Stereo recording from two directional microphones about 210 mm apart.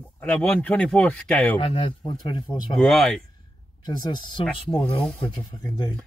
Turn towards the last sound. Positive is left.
turn(degrees=20)  # may be behind; listen again after turning